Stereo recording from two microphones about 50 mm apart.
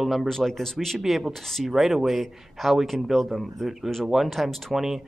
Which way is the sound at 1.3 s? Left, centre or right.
Centre.